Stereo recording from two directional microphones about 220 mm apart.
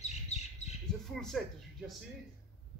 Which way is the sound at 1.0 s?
Centre (ahead or behind).